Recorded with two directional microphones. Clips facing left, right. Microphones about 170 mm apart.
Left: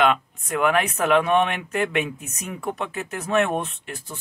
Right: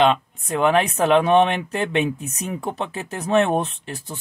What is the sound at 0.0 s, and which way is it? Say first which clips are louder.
Speech: right 3 dB; 30° right (ahead or behind).